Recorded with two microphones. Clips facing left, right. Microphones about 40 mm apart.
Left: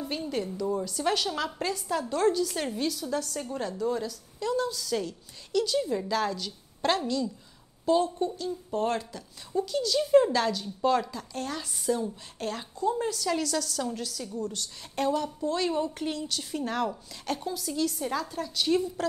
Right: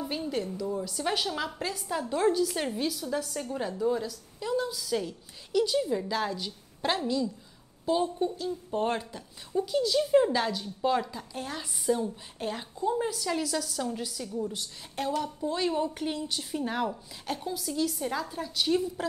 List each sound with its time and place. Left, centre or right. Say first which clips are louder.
0.0 s a woman's voice: even; centre
8.7 s a woman's voice: left 1 dB; right
9.9 s a woman's voice: left 3 dB; centre
14.8 s a woman's voice: left 3 dB; centre